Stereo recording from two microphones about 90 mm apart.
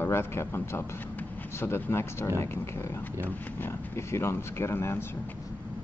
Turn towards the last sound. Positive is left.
turn(degrees=25)  # may be behind; listen again after turning